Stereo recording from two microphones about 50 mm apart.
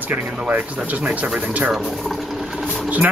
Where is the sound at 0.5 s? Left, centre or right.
Right.